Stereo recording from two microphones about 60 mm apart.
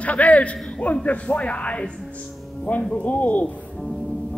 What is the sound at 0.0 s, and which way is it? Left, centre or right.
A man's voice, left.